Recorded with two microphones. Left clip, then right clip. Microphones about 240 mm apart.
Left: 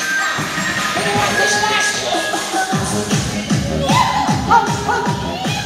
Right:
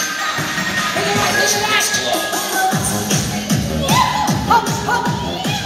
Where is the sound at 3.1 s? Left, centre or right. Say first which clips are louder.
Even; right.